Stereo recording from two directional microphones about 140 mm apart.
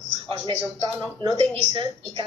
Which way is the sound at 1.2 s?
40° right (ahead or behind).